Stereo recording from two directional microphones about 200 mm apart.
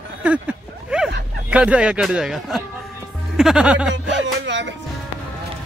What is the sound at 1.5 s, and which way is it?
Speech, 5° right (ahead or behind).